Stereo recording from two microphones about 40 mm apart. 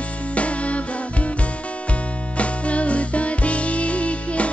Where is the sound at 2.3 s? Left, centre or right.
Left.